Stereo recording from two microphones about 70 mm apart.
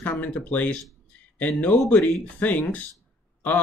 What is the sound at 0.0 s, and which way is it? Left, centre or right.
Speech, left.